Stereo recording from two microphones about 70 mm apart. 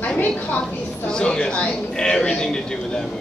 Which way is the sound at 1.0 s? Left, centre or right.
Centre.